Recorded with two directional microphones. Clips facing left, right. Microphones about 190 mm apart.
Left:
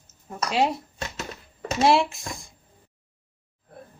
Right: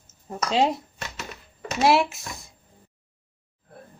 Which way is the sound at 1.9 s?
5° right (ahead or behind).